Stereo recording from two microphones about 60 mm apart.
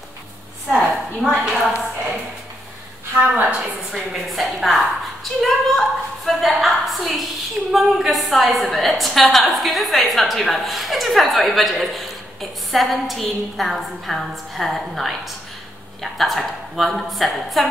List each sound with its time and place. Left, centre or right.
0.7 s a woman's voice: centre
3.2 s a woman's voice: right
3.9 s a woman's voice: centre